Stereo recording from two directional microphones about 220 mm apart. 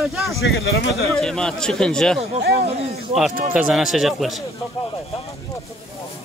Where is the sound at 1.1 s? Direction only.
5° left (ahead or behind).